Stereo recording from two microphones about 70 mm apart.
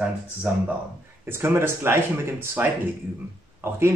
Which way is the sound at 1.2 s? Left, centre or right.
Right.